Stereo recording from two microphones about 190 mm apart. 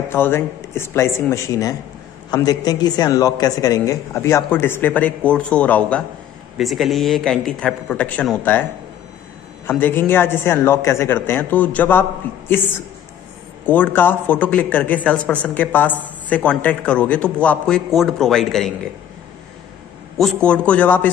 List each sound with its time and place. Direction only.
0.1 s a man's voice: 10° left (ahead or behind)
9.7 s a man's voice: 10° left (ahead or behind)
13.7 s a man's voice: 10° left (ahead or behind)
20.4 s a man's voice: 5° left (ahead or behind)